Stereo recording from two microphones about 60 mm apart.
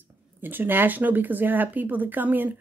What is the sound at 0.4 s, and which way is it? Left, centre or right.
Speech, right.